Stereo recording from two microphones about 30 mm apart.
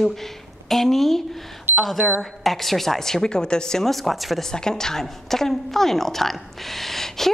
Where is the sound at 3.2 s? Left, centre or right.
Left.